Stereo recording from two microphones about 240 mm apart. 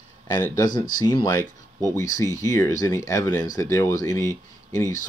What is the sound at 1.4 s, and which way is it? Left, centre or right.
Speech, centre.